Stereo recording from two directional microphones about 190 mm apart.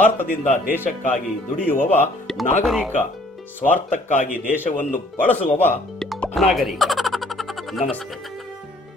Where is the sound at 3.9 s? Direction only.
45° left (ahead or behind).